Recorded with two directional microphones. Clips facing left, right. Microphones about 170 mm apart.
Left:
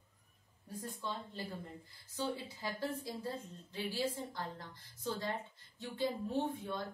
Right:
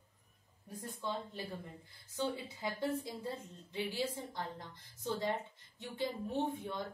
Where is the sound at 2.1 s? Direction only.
20° right (ahead or behind).